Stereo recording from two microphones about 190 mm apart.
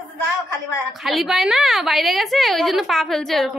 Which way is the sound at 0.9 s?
Centre (ahead or behind).